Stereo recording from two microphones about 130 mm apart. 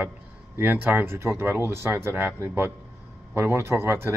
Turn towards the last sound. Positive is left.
turn(degrees=-20)  # may be behind; listen again after turning